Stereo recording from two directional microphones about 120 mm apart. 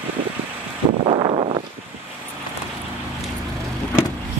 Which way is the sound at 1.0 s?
50° right (ahead or behind).